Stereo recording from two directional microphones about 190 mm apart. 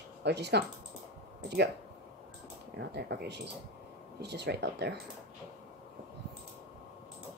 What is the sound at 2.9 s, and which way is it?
Speech, 60° right (ahead or behind).